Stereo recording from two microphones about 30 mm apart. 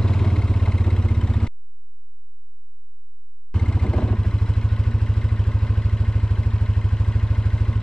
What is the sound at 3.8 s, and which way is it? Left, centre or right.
Vehicle, left.